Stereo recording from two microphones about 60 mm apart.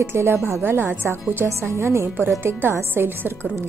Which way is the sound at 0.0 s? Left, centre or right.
Right.